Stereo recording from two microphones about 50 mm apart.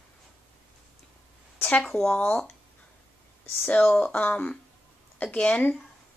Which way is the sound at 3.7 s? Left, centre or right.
Left.